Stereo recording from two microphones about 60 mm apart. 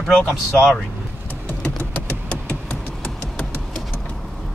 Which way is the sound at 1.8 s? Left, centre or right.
Left.